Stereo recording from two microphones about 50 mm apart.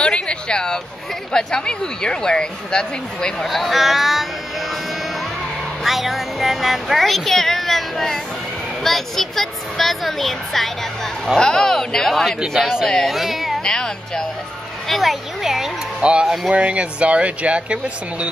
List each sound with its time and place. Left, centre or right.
0.0 s a sound: left
1.3 s speech: centre
3.4 s speech: centre
5.9 s speech: centre
12.5 s speech: centre
12.8 s speech: centre
13.1 s speech: centre
13.7 s speech: centre
14.9 s speech: centre
16.0 s speech: right